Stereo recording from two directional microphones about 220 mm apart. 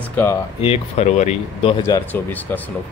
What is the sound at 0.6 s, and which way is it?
Speech, 30° left (ahead or behind).